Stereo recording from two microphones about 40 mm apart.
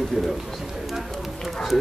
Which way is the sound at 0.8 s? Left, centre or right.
Centre.